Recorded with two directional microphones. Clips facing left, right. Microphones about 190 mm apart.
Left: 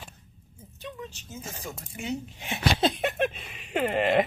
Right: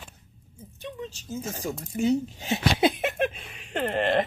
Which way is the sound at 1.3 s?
40° right (ahead or behind).